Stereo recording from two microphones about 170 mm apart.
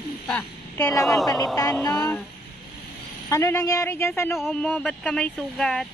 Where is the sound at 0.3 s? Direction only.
10° left (ahead or behind).